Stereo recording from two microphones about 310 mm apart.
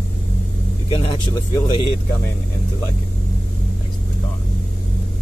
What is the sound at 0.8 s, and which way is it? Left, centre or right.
Speech, centre.